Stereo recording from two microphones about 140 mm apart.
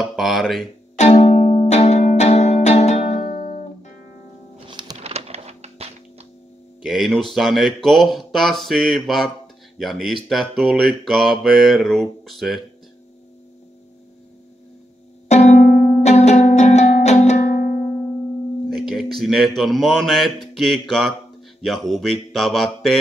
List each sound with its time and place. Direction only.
0.0 s speech: centre (ahead or behind)
1.3 s music: 60° left (ahead or behind)
3.3 s music: 65° left (ahead or behind)
4.6 s music: 35° right (ahead or behind)
5.0 s a sound: 45° right (ahead or behind)
6.8 s speech: centre (ahead or behind)
7.3 s mantra: centre (ahead or behind)
15.2 s music: 55° left (ahead or behind); by 17.7 s 70° left (ahead or behind)
18.7 s speech: centre (ahead or behind)
20.5 s mantra: centre (ahead or behind)